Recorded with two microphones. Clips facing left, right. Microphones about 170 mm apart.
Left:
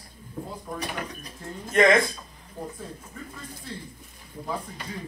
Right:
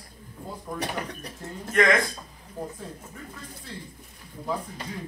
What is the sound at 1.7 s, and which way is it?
Speech, 25° left (ahead or behind).